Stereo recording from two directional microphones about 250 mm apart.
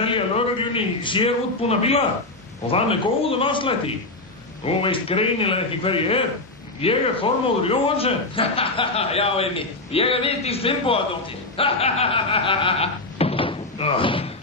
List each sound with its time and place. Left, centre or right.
0.0 s a man's voice: left